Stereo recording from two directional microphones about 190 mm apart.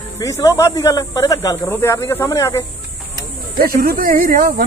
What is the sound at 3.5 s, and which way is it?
Speech, 50° right (ahead or behind).